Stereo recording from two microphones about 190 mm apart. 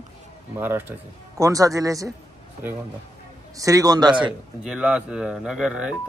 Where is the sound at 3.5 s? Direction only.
20° right (ahead or behind).